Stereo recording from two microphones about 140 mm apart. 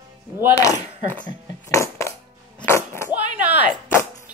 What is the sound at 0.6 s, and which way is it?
Speech, 25° left (ahead or behind).